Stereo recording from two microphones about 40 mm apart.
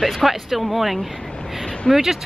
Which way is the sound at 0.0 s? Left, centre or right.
Centre.